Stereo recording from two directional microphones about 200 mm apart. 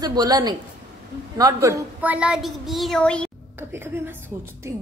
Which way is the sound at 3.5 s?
10° right (ahead or behind).